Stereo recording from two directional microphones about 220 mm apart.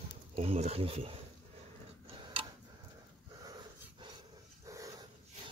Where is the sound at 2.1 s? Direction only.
25° right (ahead or behind).